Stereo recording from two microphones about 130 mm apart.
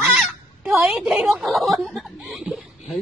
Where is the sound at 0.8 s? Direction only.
10° right (ahead or behind).